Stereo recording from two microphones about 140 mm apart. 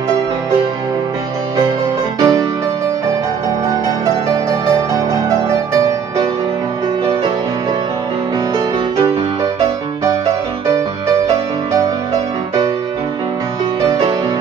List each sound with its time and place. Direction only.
2.1 s music: 25° right (ahead or behind)